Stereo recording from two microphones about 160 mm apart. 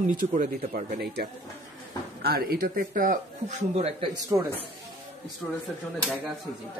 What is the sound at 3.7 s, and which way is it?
Speech, 40° right (ahead or behind).